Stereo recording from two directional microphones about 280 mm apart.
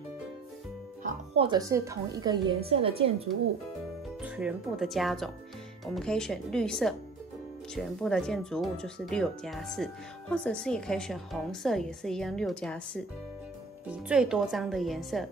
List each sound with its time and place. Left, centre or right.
1.0 s a woman's voice: centre
4.2 s speech: centre